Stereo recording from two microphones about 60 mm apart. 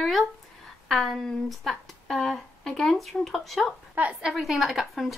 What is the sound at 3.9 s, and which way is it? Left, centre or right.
Speech, right.